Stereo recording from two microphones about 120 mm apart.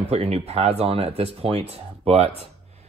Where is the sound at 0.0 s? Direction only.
55° right (ahead or behind).